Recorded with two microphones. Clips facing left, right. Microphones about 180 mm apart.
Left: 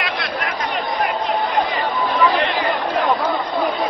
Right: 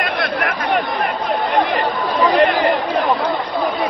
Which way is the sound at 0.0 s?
55° right (ahead or behind).